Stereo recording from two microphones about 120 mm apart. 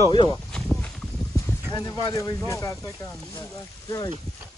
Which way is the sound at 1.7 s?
30° left (ahead or behind).